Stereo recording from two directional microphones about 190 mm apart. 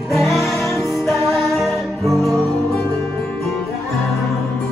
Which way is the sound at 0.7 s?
15° left (ahead or behind).